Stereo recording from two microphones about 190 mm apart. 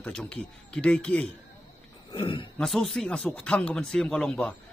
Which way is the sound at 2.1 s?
25° left (ahead or behind).